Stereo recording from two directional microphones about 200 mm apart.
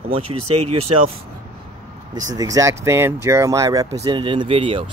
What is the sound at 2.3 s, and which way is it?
Speech, 15° right (ahead or behind).